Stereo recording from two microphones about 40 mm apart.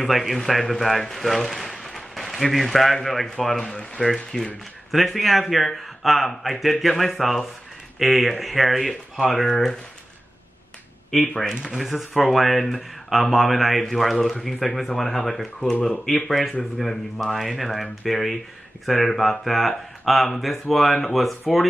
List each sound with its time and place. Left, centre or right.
0.0 s a man's voice: centre
3.7 s speech: left
4.1 s speech: centre
11.7 s speech: centre